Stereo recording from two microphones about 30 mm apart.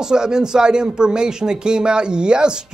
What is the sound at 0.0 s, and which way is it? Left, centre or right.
Speech, right.